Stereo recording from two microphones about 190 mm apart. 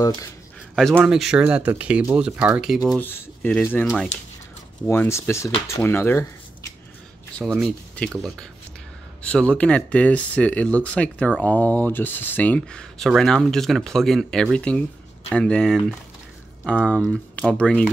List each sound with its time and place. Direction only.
0.0 s speech: 20° left (ahead or behind)
0.9 s speech: 5° right (ahead or behind)
3.0 s speech: 10° left (ahead or behind)
4.8 s speech: 15° left (ahead or behind)
7.3 s speech: centre (ahead or behind)